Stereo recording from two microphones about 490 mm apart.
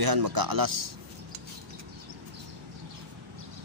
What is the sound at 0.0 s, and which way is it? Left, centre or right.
Speech, right.